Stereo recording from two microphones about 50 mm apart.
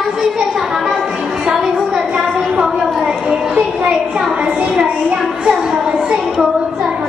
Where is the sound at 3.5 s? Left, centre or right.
Right.